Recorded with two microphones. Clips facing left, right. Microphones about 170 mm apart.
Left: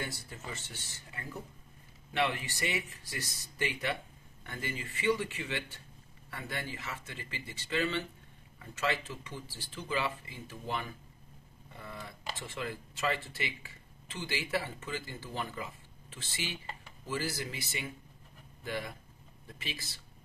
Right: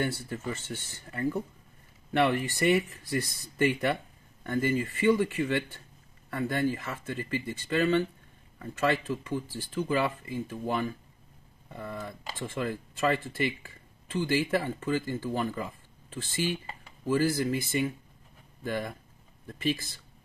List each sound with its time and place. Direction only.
0.0 s speech: 55° right (ahead or behind)